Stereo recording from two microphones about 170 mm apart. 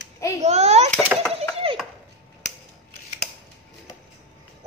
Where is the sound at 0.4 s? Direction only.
40° right (ahead or behind).